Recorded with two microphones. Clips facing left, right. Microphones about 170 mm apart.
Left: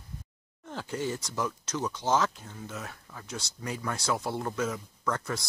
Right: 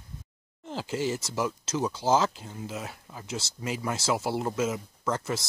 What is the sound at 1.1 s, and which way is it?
Speech, 25° right (ahead or behind).